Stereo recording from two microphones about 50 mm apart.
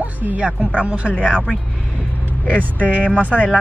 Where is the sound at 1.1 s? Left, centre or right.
Left.